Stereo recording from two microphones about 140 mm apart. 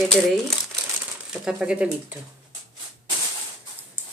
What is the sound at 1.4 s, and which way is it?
Speech, 5° right (ahead or behind).